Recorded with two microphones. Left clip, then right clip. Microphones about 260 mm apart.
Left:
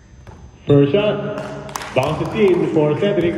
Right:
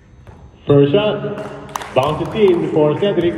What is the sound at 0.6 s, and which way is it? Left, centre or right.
A man's voice, centre.